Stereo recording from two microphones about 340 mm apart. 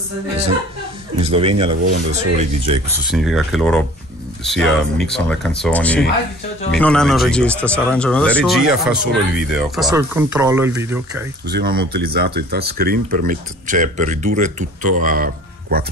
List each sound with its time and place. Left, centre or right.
1.2 s speech: centre
3.1 s speech: centre
11.4 s speech: right